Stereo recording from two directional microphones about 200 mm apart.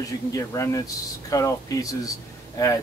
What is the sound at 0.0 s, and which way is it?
Speech, 15° left (ahead or behind).